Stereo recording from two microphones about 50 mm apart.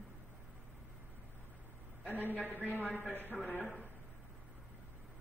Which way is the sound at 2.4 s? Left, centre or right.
Right.